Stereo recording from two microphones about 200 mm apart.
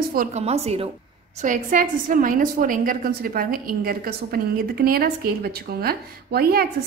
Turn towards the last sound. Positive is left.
turn(degrees=-50)  # may be behind; listen again after turning